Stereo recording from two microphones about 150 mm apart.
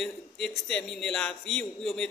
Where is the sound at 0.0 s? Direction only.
Centre (ahead or behind).